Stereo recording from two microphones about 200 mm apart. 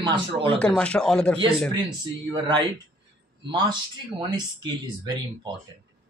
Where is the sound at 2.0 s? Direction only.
25° right (ahead or behind).